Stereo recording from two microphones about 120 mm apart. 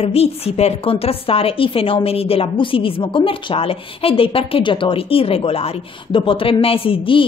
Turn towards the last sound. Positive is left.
turn(degrees=45)  # may be behind; listen again after turning